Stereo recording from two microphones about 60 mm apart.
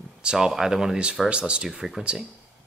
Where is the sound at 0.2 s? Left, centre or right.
Centre.